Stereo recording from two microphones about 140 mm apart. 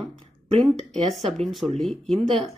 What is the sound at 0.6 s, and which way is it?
Speech, centre (ahead or behind).